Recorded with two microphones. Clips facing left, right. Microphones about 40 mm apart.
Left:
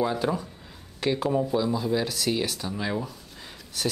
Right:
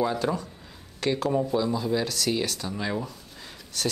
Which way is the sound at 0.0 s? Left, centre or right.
Centre.